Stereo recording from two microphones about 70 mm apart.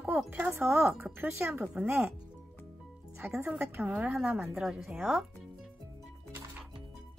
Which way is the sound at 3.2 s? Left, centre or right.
Right.